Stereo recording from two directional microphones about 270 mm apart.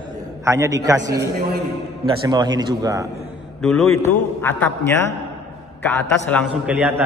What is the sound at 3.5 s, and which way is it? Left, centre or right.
A man's voice, centre.